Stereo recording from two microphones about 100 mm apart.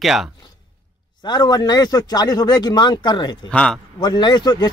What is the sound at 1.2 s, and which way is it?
Speech, 45° left (ahead or behind).